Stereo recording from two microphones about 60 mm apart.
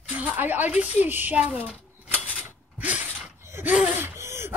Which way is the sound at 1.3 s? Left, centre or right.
Right.